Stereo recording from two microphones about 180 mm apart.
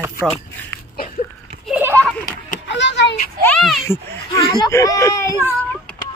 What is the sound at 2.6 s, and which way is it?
Vehicle, 80° left.